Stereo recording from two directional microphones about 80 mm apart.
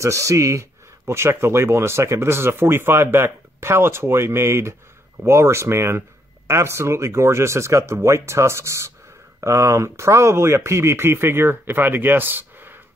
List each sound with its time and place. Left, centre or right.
0.0 s speech: right